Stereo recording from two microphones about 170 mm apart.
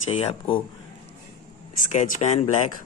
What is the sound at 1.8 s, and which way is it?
Speech, 50° left (ahead or behind).